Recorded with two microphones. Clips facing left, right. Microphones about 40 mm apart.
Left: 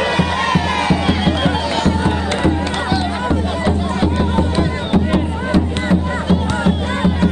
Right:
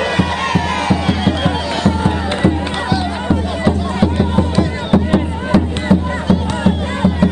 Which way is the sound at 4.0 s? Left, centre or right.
Centre.